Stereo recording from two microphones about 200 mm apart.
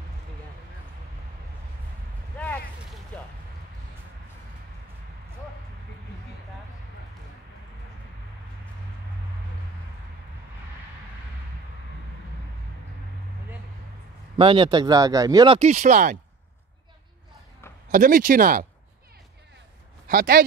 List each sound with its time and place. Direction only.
2.3 s a sound: 10° left (ahead or behind)
14.4 s speech: 25° right (ahead or behind)
17.9 s speech: 45° right (ahead or behind)
20.1 s speech: 45° right (ahead or behind)